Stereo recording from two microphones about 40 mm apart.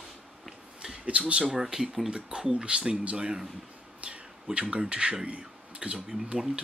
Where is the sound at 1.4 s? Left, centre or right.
Centre.